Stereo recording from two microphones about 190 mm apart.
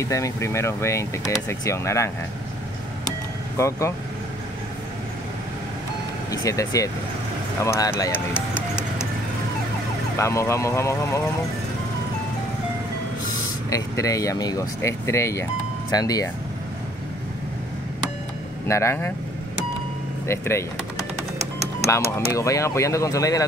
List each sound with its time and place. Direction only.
0.0 s speech: 15° left (ahead or behind)
3.5 s speech: 15° left (ahead or behind)
6.3 s speech: 15° left (ahead or behind)
8.5 s music: 5° right (ahead or behind)
10.1 s speech: 15° left (ahead or behind)
13.7 s speech: 15° left (ahead or behind)
18.7 s speech: 15° left (ahead or behind)
20.2 s speech: 15° left (ahead or behind)
21.8 s speech: 15° left (ahead or behind)